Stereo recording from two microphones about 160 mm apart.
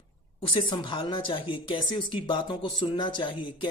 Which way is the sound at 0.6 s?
30° left (ahead or behind).